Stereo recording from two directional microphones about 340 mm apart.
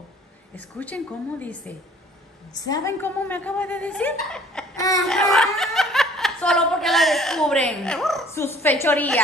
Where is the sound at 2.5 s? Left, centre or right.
Centre.